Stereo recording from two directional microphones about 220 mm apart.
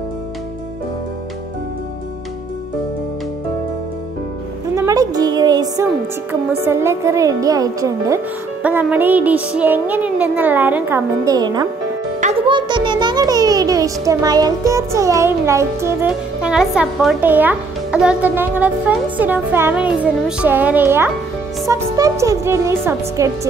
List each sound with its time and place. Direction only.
4.7 s a child's voice: 15° right (ahead or behind)